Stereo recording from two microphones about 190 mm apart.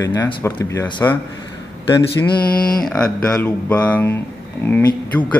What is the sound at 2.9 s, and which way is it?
Speech, 5° left (ahead or behind).